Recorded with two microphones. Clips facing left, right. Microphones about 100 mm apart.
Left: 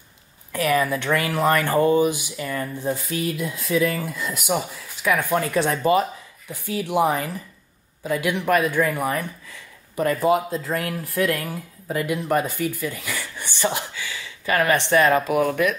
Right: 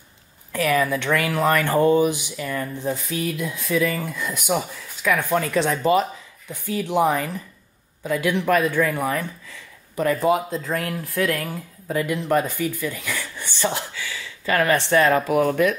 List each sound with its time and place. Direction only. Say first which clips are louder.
0.5 s speech: even; 15° left (ahead or behind)
3.3 s speech: even; centre (ahead or behind); by 15.3 s 20° left (ahead or behind)
15.3 s speech: right 2 dB; 20° right (ahead or behind)